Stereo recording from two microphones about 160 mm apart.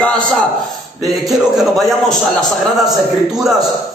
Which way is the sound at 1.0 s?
Centre (ahead or behind).